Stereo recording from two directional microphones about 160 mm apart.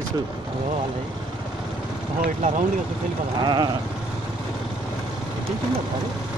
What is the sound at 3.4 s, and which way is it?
Speech, 25° right (ahead or behind).